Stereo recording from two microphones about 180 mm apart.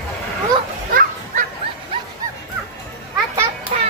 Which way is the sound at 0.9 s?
50° right (ahead or behind).